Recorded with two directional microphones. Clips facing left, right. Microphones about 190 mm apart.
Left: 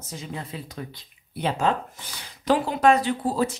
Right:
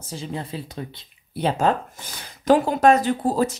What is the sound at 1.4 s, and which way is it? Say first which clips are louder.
Speech: right 3 dB; 45° right (ahead or behind).